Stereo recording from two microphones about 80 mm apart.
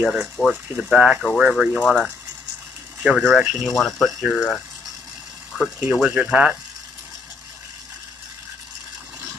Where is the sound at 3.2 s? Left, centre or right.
Centre.